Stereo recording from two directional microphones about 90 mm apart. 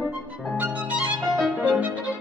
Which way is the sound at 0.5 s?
15° right (ahead or behind).